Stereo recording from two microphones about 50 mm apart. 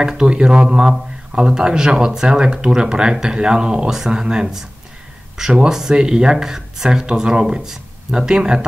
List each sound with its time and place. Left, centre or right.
0.0 s speech: centre